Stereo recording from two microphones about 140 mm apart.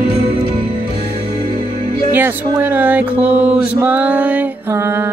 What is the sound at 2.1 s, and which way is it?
Music, 15° right (ahead or behind).